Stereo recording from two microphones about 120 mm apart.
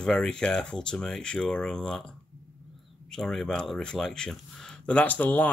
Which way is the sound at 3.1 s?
Centre (ahead or behind).